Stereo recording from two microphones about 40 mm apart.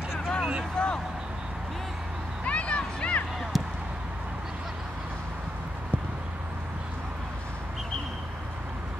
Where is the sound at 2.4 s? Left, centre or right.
Left.